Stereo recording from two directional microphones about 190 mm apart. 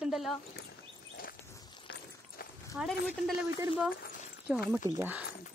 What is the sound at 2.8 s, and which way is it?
Speech, 5° right (ahead or behind).